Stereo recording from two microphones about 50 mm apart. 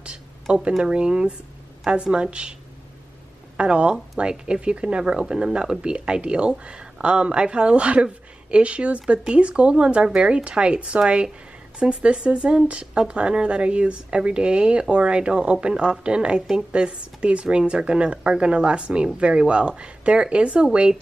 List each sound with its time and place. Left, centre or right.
0.0 s a sound: right
0.9 s speech: centre
3.5 s speech: right